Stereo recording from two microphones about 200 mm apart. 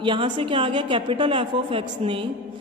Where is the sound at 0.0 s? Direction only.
25° right (ahead or behind).